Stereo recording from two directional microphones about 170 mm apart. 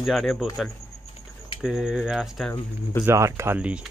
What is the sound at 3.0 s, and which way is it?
Speech, 15° right (ahead or behind).